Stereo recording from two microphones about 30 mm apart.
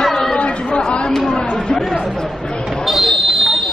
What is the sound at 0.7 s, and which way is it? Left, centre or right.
Chatter, left.